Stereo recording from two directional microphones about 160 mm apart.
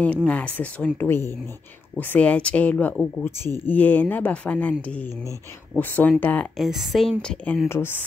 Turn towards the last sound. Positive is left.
turn(degrees=15)  # may be behind; listen again after turning